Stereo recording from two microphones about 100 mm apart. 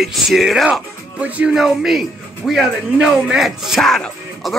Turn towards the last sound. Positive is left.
turn(degrees=5)  # may be behind; listen again after turning